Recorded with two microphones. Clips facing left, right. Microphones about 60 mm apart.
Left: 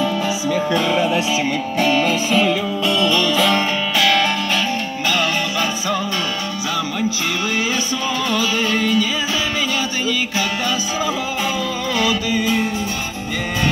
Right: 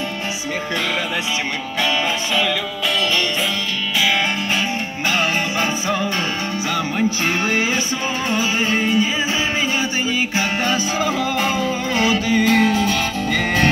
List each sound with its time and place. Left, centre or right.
4.0 s music: centre
5.0 s music: right
8.3 s music: right
10.3 s music: right
12.5 s music: right